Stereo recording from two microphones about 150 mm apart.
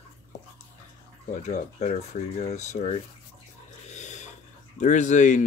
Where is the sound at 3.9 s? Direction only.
50° left (ahead or behind).